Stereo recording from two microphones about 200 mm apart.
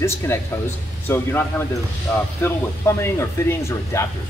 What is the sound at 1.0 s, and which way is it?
Speech, 10° left (ahead or behind).